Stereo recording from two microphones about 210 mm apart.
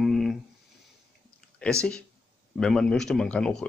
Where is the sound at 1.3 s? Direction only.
5° left (ahead or behind).